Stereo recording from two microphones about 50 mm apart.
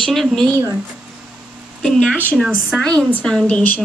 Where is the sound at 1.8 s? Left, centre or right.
Centre.